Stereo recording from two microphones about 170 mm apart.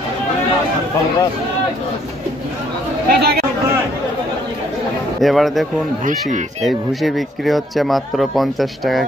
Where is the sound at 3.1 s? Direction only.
70° right (ahead or behind).